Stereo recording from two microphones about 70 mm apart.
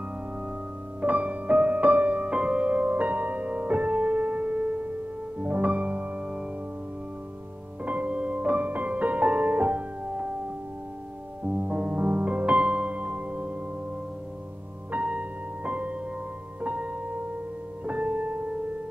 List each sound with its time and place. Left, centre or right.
1.0 s music: right
7.8 s music: centre
11.5 s music: centre
14.9 s music: centre